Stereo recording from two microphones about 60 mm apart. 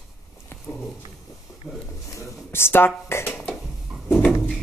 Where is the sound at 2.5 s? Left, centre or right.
Left.